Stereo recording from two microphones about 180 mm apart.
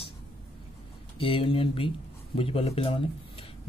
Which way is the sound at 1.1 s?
30° left (ahead or behind).